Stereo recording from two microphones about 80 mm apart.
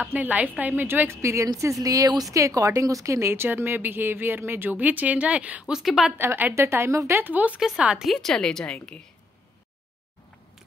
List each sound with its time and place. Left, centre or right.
0.1 s speech: centre
5.8 s speech: centre
6.1 s a woman's voice: right
7.2 s speech: right
8.1 s a woman's voice: centre